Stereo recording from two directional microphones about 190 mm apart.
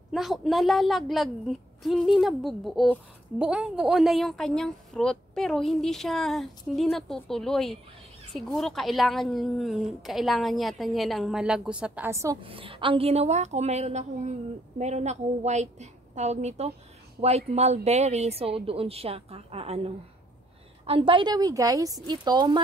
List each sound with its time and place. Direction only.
0.1 s a woman's voice: centre (ahead or behind)
12.4 s a woman's voice: 30° right (ahead or behind)